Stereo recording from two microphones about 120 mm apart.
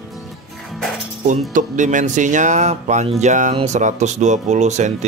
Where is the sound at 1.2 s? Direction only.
90° right.